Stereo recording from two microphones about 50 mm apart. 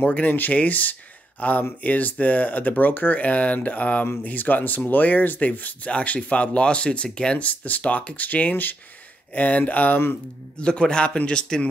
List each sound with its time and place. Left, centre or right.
0.0 s speech: left
10.6 s speech: centre